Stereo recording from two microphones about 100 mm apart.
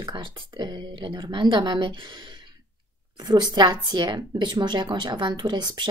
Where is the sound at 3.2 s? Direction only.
45° right (ahead or behind).